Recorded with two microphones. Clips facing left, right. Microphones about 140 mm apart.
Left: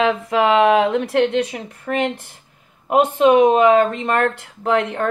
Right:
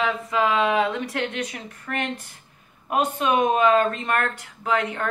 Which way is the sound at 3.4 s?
65° left (ahead or behind).